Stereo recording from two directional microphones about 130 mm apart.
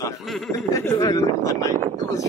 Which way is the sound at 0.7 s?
25° left (ahead or behind).